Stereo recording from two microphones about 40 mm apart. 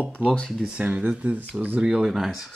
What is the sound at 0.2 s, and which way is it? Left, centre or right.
Speech, right.